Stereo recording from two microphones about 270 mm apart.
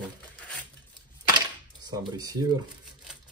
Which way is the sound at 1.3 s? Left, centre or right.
Centre.